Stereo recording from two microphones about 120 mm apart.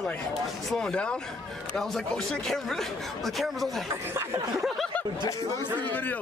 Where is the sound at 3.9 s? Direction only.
20° right (ahead or behind).